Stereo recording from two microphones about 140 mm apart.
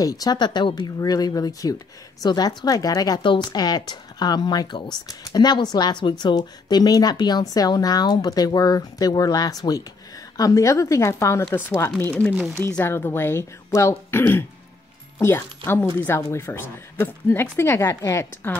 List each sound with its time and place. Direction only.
0.0 s speech: 25° left (ahead or behind)